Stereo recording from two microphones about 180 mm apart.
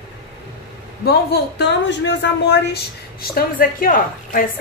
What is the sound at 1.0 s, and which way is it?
A woman's voice, 60° left (ahead or behind).